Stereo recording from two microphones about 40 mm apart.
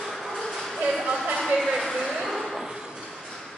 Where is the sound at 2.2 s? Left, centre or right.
Centre.